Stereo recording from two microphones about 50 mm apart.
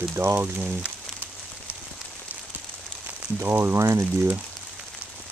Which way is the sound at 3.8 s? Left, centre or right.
Right.